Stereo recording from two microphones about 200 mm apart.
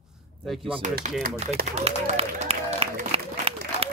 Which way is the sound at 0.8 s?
40° right (ahead or behind).